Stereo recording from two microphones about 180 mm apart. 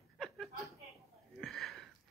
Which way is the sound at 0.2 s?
Centre (ahead or behind).